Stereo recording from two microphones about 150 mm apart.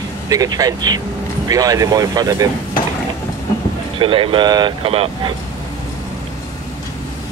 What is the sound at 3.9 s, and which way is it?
Speech, 35° right (ahead or behind).